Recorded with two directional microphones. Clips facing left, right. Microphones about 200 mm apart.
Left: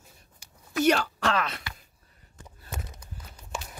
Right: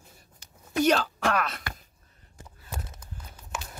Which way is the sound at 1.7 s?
50° right (ahead or behind).